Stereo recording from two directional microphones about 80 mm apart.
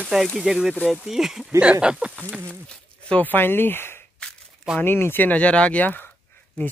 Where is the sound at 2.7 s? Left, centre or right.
Centre.